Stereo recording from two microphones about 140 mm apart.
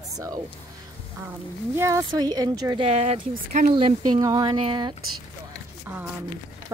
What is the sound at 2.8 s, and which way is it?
Speech, 50° right (ahead or behind).